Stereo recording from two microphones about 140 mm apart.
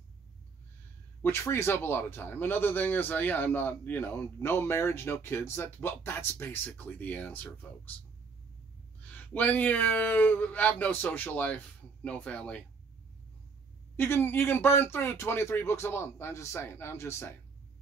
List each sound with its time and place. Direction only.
1.2 s speech: 15° left (ahead or behind)
9.1 s speech: 10° left (ahead or behind)
13.9 s speech: 15° left (ahead or behind)